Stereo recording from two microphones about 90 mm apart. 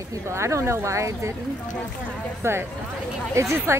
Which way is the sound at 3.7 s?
35° right (ahead or behind).